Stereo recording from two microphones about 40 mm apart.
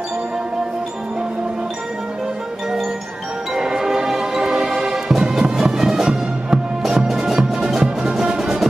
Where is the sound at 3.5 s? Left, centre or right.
Centre.